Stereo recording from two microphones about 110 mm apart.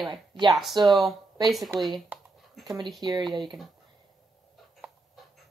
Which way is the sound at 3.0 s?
35° right (ahead or behind).